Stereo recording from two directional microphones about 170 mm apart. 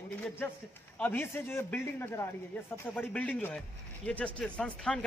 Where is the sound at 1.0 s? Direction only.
10° left (ahead or behind).